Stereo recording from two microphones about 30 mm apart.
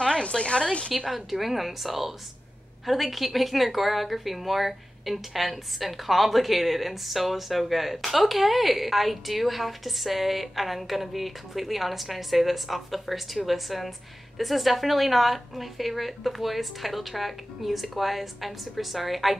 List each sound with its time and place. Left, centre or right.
0.0 s a woman's voice: left
1.1 s speech: centre